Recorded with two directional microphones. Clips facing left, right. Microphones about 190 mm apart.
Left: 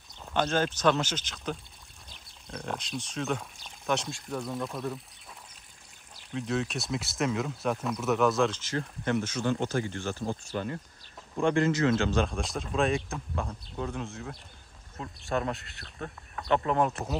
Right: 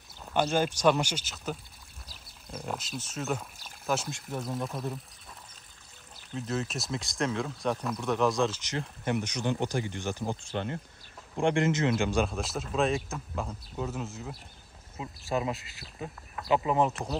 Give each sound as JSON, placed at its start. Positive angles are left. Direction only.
{"t": 0.2, "sound": "speech", "side_deg": -10}
{"t": 2.0, "sound": "a sound", "side_deg": -5}
{"t": 4.8, "sound": "speech", "side_deg": 0}
{"t": 6.3, "sound": "speech", "side_deg": 0}
{"t": 8.6, "sound": "speech", "side_deg": -15}
{"t": 11.4, "sound": "speech", "side_deg": -20}